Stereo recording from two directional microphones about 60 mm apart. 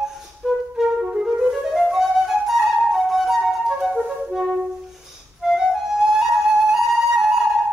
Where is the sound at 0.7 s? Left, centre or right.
Centre.